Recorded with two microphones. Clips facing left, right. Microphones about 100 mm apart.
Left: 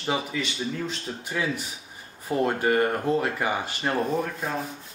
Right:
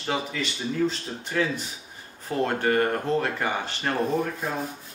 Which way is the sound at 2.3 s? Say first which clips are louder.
Left 1 dB; 10° left (ahead or behind).